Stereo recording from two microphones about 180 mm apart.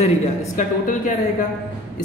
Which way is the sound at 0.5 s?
45° left (ahead or behind).